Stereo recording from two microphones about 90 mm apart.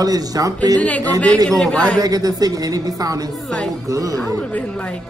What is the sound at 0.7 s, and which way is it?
Speech, 15° left (ahead or behind).